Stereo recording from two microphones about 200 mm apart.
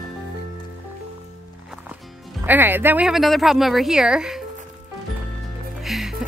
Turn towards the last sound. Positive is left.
turn(degrees=0)  # may be behind; listen again after turning